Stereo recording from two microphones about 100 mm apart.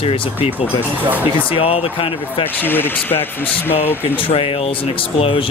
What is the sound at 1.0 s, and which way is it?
Speech, 15° right (ahead or behind).